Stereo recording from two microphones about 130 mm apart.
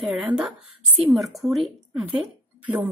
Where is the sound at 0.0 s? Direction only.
5° right (ahead or behind).